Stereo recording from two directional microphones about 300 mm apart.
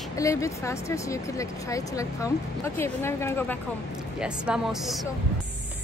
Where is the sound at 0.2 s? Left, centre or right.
Centre.